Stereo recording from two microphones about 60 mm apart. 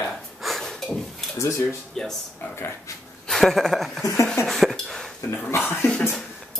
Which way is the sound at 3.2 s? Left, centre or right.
Centre.